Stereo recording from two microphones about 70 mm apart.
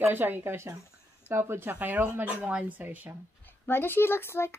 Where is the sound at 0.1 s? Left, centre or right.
Right.